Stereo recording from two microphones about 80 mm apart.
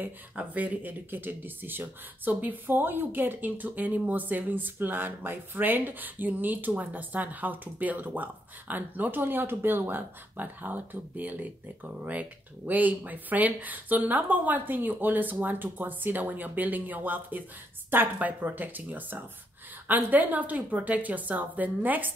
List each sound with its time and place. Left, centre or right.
0.0 s speech: centre